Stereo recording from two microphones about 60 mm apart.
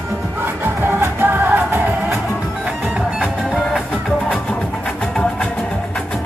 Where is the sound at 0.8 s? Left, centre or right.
Right.